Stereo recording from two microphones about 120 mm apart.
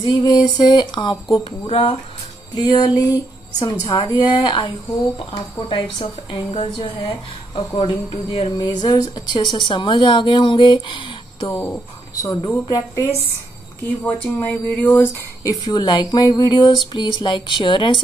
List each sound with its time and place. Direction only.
0.0 s speech: 35° left (ahead or behind)
1.7 s a woman's voice: 50° left (ahead or behind)
2.5 s a woman's voice: 35° left (ahead or behind)
11.5 s speech: 15° left (ahead or behind)
12.6 s speech: 30° left (ahead or behind)
14.0 s speech: 10° left (ahead or behind)
15.4 s speech: 40° left (ahead or behind)